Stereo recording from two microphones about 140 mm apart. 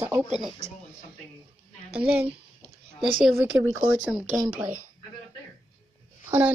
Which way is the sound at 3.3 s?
15° right (ahead or behind).